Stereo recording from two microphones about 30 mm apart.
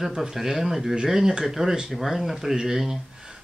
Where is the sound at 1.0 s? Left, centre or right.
Centre.